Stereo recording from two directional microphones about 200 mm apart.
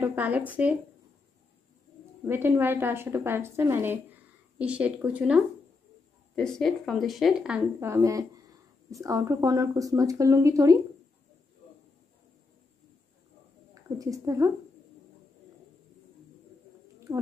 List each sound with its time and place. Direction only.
0.0 s speech: 10° right (ahead or behind)
2.2 s speech: 10° right (ahead or behind)
13.9 s speech: 15° right (ahead or behind)
17.1 s a sound: 15° right (ahead or behind)